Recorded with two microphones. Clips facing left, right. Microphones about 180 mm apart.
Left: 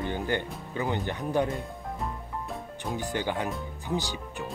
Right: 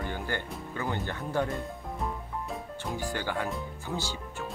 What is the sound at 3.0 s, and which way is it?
Speech, 20° left (ahead or behind).